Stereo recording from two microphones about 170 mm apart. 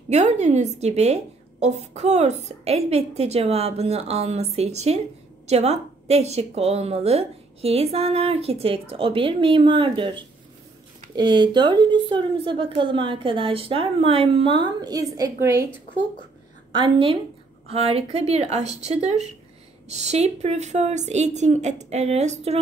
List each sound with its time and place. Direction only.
0.1 s a woman's voice: 40° right (ahead or behind); by 15.6 s 20° right (ahead or behind)
16.7 s a woman's voice: 30° right (ahead or behind)